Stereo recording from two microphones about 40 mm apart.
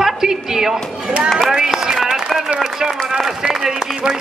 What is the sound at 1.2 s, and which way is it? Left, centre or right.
Speech, centre.